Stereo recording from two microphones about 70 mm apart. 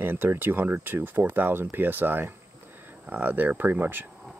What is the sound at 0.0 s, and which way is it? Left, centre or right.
Speech, right.